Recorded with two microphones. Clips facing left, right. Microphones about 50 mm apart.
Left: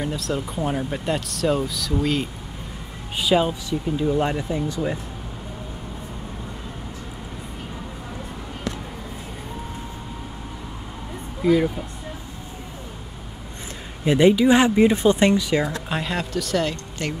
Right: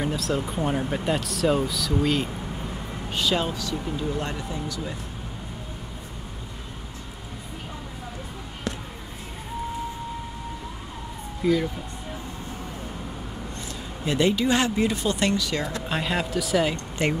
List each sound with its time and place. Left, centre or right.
0.0 s speech: centre
3.2 s speech: centre
4.2 s speech: left
11.4 s speech: centre
14.0 s speech: left
15.7 s speech: centre
17.0 s speech: right